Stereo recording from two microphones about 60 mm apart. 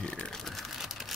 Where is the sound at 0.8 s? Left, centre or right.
Centre.